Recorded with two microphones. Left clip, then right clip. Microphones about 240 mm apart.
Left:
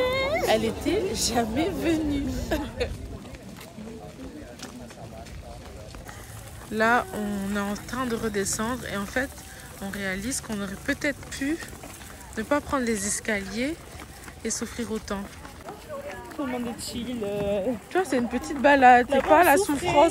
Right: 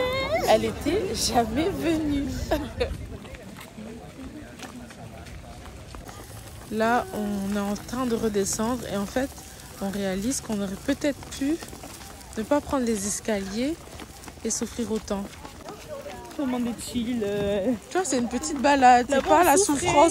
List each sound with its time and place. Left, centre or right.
0.0 s cat: centre
0.5 s a woman's voice: centre
6.7 s speech: centre
16.4 s speech: right
17.9 s speech: centre